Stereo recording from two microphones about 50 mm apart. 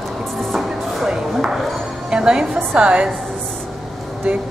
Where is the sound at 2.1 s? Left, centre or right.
Centre.